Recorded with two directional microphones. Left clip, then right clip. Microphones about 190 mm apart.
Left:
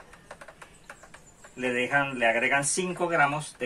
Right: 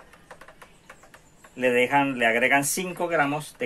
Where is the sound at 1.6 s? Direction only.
45° right (ahead or behind).